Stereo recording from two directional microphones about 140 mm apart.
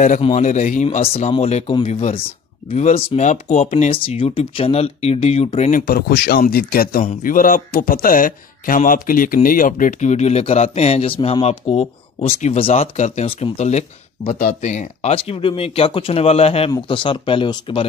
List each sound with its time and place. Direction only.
0.2 s speech: 55° left (ahead or behind)
1.0 s speech: 45° left (ahead or behind)
1.9 s speech: 55° left (ahead or behind)
3.9 s speech: 40° left (ahead or behind)
5.7 s speech: 80° left; by 17.8 s 40° left (ahead or behind)